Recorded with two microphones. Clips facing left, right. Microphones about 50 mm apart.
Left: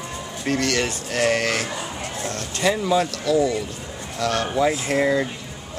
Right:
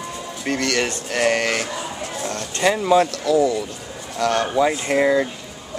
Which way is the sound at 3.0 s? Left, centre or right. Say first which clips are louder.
Right 2 dB; right.